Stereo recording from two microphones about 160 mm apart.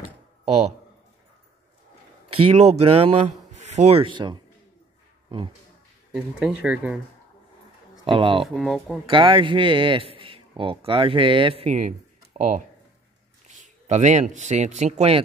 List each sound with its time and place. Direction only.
2.2 s a man's voice: 40° right (ahead or behind)
6.1 s speech: 5° right (ahead or behind)
8.0 s speech: 35° right (ahead or behind)
8.4 s speech: centre (ahead or behind)
9.1 s a man's voice: 35° right (ahead or behind)